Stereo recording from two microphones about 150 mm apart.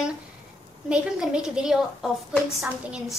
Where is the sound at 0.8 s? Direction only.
5° right (ahead or behind).